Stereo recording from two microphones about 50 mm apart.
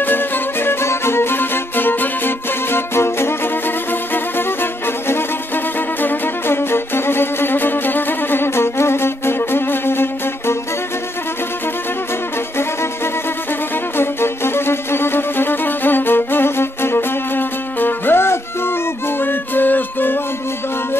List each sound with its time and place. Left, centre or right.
0.0 s music: left
13.9 s music: left